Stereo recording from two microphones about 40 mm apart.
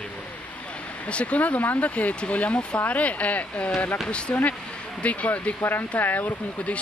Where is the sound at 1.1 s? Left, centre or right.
Left.